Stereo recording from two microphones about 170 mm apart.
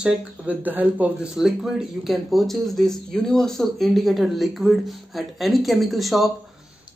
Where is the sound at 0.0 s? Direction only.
5° right (ahead or behind).